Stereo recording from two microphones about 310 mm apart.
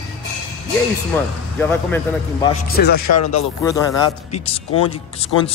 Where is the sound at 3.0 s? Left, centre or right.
Left.